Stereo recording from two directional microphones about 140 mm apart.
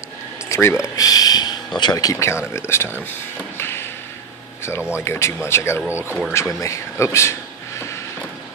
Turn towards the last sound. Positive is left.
turn(degrees=20)  # may be behind; listen again after turning